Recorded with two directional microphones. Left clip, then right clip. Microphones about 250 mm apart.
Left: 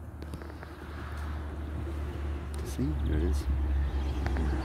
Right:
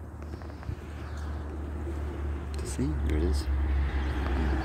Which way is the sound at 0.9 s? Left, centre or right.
Left.